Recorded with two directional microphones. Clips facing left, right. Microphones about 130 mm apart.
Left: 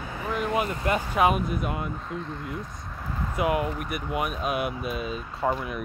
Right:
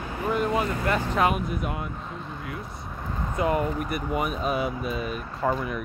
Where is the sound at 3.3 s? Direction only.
5° left (ahead or behind).